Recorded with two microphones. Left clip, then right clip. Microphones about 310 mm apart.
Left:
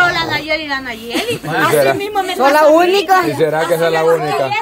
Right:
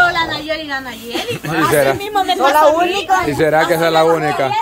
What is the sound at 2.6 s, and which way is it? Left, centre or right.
Speech, left.